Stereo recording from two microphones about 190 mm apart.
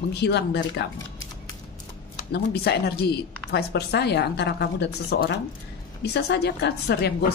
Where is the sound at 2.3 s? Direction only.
55° left (ahead or behind).